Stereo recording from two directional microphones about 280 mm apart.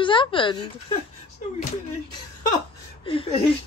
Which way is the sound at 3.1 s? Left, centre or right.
Centre.